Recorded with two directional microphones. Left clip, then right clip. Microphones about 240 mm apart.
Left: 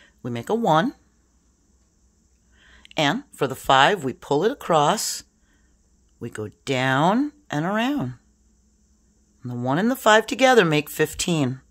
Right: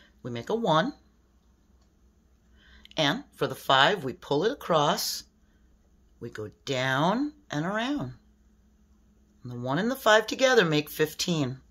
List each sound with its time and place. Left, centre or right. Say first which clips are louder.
0.0 s speech: left 6 dB; left
2.5 s speech: left 5 dB; left
9.4 s speech: left 6 dB; left